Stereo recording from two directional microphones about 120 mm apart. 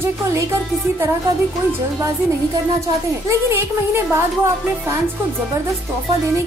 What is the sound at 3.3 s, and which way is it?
Speech, 20° right (ahead or behind).